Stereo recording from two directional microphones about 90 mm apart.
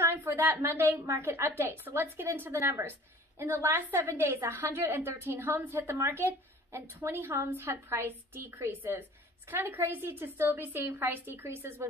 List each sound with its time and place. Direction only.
0.0 s a woman's voice: 30° right (ahead or behind)